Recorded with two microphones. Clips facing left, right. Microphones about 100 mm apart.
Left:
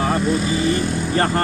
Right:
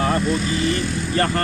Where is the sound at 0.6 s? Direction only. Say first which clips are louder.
Left 2 dB; 35° left (ahead or behind).